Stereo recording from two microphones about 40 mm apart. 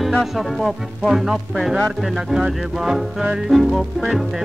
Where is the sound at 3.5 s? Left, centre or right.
Centre.